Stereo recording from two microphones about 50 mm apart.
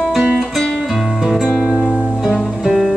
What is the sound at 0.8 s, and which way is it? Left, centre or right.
Music, centre.